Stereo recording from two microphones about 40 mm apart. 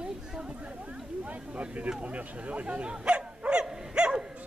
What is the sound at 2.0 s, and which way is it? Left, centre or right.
Bow-wow, right.